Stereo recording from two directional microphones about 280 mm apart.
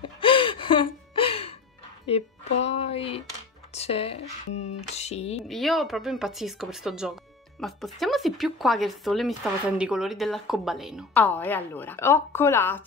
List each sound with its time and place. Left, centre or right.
0.0 s gasp: centre
2.0 s speech: left
5.5 s speech: centre